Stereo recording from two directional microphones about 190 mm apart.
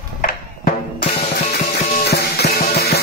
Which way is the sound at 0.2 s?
50° left (ahead or behind).